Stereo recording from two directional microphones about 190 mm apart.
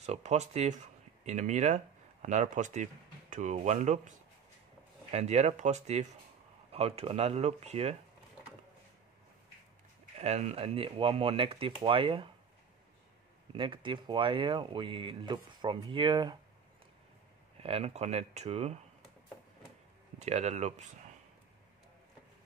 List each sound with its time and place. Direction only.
0.0 s speech: 35° right (ahead or behind)
5.1 s speech: 35° right (ahead or behind)
10.1 s speech: 35° right (ahead or behind)
13.6 s speech: 25° right (ahead or behind)
17.6 s speech: 30° right (ahead or behind)
20.2 s speech: 35° right (ahead or behind)